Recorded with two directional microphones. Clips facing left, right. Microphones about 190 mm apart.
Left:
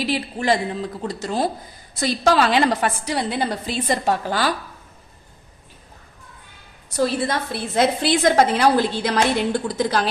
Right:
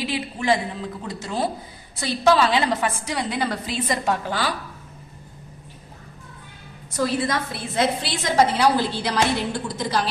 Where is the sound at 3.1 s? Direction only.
30° left (ahead or behind).